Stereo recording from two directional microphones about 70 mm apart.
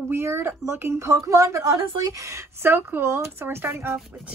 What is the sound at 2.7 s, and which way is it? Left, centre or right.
Speech, right.